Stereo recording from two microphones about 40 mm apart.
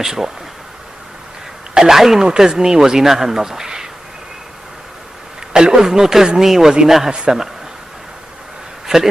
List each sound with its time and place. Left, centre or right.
0.0 s speech: centre
1.7 s speech: centre
5.5 s a man's voice: centre
8.9 s speech: centre